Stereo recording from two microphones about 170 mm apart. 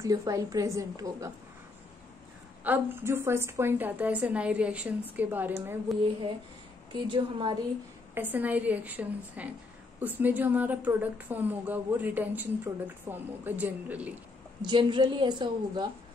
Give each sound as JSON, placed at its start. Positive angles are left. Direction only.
{"t": 0.0, "sound": "a woman's voice", "side_deg": -20}
{"t": 2.6, "sound": "a woman's voice", "side_deg": -10}
{"t": 5.9, "sound": "speech", "side_deg": 0}
{"t": 6.9, "sound": "a woman's voice", "side_deg": -30}
{"t": 8.1, "sound": "a woman's voice", "side_deg": -10}
{"t": 14.6, "sound": "a woman's voice", "side_deg": -25}